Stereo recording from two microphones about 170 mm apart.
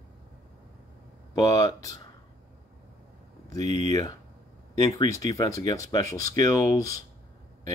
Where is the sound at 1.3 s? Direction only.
20° left (ahead or behind).